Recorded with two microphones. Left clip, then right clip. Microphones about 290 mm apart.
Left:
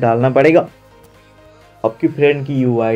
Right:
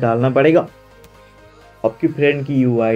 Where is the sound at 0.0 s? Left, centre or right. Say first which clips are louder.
Left 2 dB; centre.